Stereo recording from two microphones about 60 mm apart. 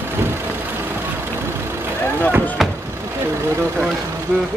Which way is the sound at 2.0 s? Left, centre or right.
Left.